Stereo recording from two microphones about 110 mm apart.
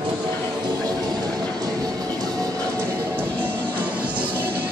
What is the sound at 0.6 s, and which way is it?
Music, 35° right (ahead or behind).